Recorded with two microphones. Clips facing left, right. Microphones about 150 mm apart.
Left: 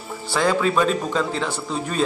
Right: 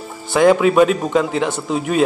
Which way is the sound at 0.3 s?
15° right (ahead or behind).